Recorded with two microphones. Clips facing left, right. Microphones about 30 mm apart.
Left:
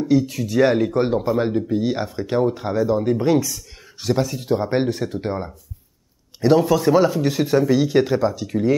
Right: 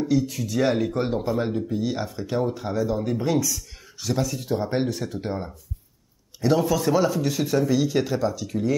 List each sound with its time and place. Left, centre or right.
0.1 s speech: centre